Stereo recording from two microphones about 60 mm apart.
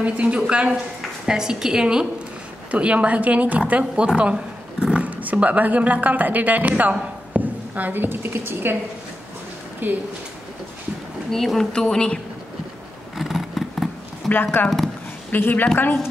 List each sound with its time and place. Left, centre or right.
0.0 s a woman's voice: right
9.8 s speech: right
11.2 s speech: centre
13.2 s vehicle: centre
14.3 s a woman's voice: left